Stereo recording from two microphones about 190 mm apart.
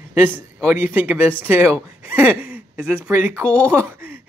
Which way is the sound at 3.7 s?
10° right (ahead or behind).